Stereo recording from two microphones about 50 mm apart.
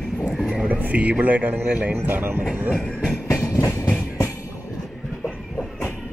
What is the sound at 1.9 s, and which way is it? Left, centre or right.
Speech, right.